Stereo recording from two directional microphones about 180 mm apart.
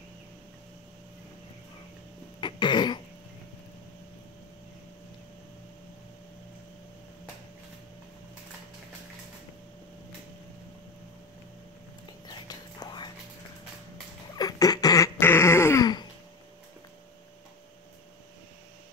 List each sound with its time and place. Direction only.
2.4 s cough: 25° left (ahead or behind)
12.3 s whispering: 25° left (ahead or behind)
14.3 s a sound: 20° left (ahead or behind)